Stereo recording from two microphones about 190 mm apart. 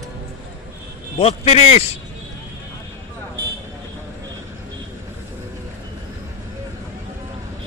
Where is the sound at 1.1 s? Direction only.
35° left (ahead or behind).